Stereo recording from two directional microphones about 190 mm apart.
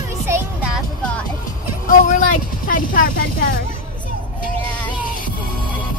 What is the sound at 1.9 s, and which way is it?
Speech, 45° left (ahead or behind).